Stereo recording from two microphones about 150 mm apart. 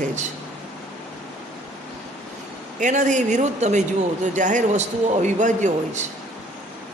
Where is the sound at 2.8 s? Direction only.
55° right (ahead or behind).